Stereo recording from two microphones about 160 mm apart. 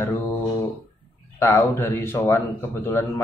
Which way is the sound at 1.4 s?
15° left (ahead or behind).